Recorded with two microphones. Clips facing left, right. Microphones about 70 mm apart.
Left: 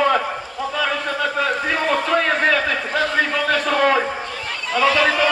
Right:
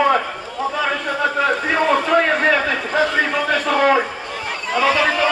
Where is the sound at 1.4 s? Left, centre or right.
Centre.